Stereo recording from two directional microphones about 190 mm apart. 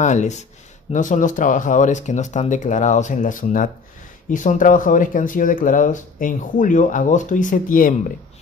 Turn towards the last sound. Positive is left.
turn(degrees=45)  # may be behind; listen again after turning